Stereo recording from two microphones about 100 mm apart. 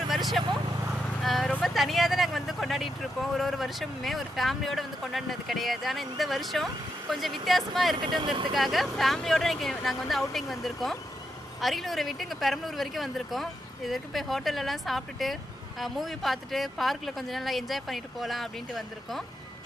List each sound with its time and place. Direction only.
1.2 s speech: centre (ahead or behind)
8.0 s speech: 50° right (ahead or behind)
8.5 s speech: centre (ahead or behind)